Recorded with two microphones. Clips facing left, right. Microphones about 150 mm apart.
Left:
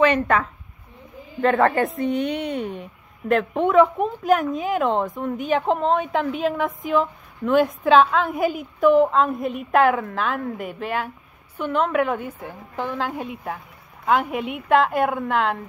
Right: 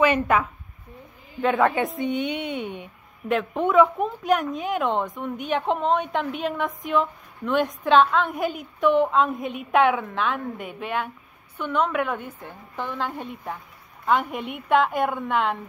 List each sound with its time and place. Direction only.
0.0 s a woman's voice: 10° right (ahead or behind)